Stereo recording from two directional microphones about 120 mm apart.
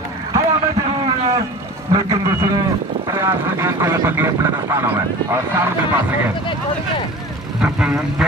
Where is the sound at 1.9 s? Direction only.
30° right (ahead or behind).